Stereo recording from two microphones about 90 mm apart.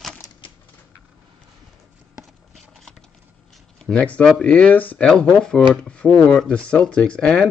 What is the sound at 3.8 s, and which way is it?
Speech, 15° left (ahead or behind).